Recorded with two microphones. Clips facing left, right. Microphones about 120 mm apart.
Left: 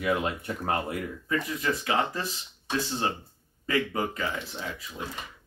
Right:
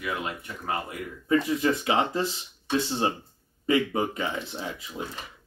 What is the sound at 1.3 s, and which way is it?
Speech, 25° right (ahead or behind).